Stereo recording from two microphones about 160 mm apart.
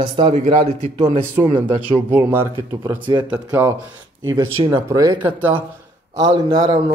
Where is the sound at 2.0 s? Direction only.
15° right (ahead or behind).